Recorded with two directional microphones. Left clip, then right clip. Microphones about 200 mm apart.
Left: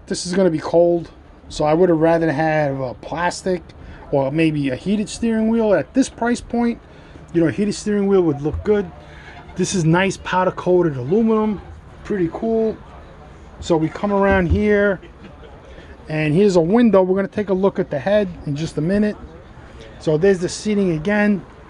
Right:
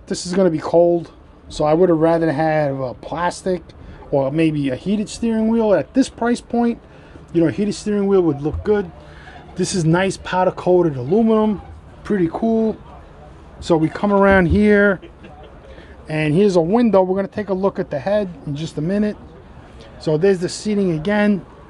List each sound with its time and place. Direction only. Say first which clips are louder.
0.1 s speech: even; centre (ahead or behind)
12.0 s speech: right 2 dB; 20° right (ahead or behind)
16.1 s speech: even; centre (ahead or behind)